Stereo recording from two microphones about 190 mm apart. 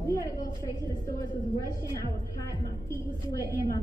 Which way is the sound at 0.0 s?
15° left (ahead or behind).